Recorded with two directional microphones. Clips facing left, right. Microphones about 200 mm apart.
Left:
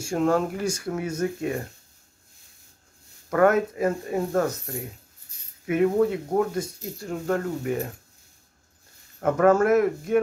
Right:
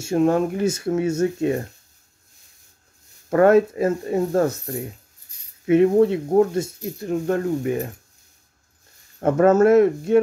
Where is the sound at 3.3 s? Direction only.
30° right (ahead or behind).